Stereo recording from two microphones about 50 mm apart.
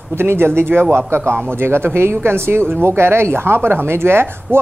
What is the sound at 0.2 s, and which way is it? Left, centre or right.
A woman's voice, right.